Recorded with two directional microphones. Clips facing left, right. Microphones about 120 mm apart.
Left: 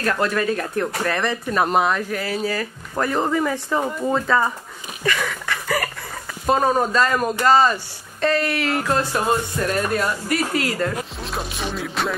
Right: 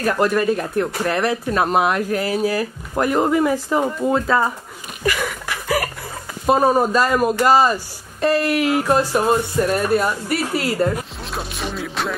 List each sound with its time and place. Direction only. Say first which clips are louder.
0.0 s speech: right 3 dB; 10° right (ahead or behind)
2.0 s speech: right 4 dB; 40° right (ahead or behind)
2.4 s speech: right 4 dB; 15° right (ahead or behind)
5.0 s a sound: right 1 dB; 10° right (ahead or behind)
6.4 s speech: right 3 dB; 5° right (ahead or behind)